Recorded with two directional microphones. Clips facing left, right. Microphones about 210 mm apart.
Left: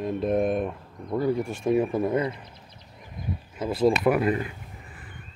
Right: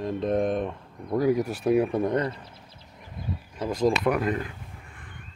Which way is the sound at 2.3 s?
15° left (ahead or behind).